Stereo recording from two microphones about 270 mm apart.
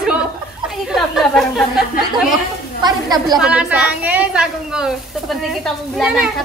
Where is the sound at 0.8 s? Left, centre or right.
Centre.